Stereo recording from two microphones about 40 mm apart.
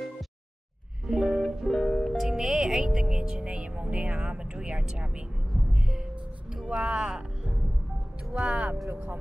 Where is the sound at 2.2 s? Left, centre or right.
Centre; by 4.8 s right.